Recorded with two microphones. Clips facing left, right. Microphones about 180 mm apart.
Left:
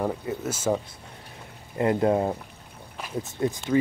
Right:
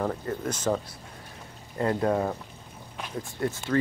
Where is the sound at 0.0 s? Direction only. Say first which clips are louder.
Left 1 dB; 10° left (ahead or behind).